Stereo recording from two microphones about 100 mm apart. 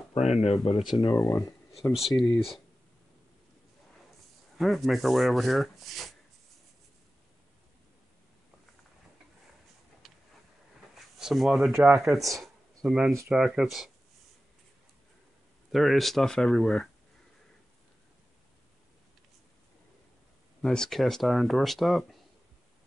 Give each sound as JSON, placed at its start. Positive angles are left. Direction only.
{"t": 0.1, "sound": "speech", "side_deg": 90}
{"t": 0.5, "sound": "speech", "side_deg": 0}
{"t": 4.6, "sound": "speech", "side_deg": 0}
{"t": 10.0, "sound": "a sound", "side_deg": 0}
{"t": 12.1, "sound": "speech", "side_deg": 0}
{"t": 15.7, "sound": "speech", "side_deg": 0}
{"t": 20.6, "sound": "speech", "side_deg": 5}